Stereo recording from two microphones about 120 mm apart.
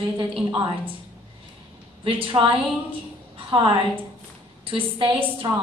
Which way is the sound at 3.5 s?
45° right (ahead or behind).